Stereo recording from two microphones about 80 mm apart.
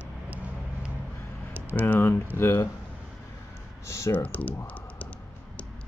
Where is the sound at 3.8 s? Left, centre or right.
Left.